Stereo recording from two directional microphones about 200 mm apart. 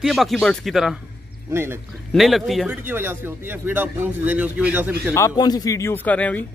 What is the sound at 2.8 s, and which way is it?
Speech, 10° right (ahead or behind).